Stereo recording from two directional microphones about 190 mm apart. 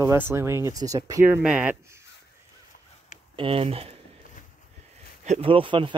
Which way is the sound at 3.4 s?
30° right (ahead or behind).